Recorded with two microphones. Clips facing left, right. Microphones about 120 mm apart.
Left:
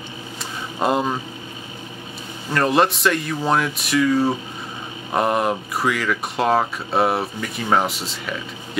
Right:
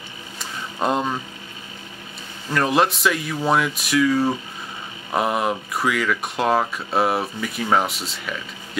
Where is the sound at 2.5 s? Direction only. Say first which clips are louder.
Left 1 dB; centre (ahead or behind).